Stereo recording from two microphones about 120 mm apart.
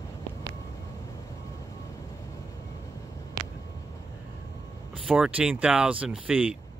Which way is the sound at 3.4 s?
30° right (ahead or behind).